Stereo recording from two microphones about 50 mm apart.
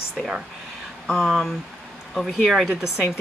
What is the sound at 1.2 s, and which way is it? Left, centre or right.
Speech, centre.